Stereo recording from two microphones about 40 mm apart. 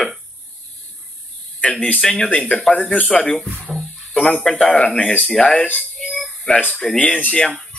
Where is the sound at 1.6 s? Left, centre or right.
Left.